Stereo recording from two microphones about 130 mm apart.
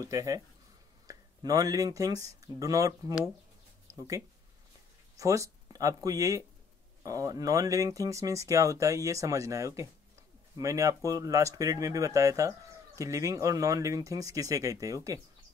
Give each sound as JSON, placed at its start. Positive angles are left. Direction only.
{"t": 0.0, "sound": "speech", "side_deg": -25}
{"t": 3.9, "sound": "a sound", "side_deg": -25}
{"t": 5.1, "sound": "speech", "side_deg": -25}